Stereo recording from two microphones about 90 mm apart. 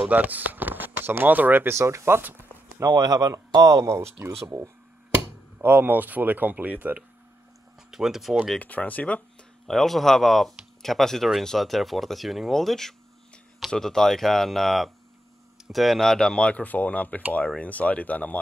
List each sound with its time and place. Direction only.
0.0 s speech: 20° right (ahead or behind)
2.8 s speech: 45° right (ahead or behind)
5.6 s speech: 25° right (ahead or behind)
7.9 s speech: 5° right (ahead or behind)
8.5 s speech: 15° left (ahead or behind)
9.7 s speech: centre (ahead or behind)